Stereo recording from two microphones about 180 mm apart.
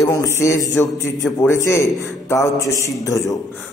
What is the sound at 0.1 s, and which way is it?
A man's voice, 15° left (ahead or behind).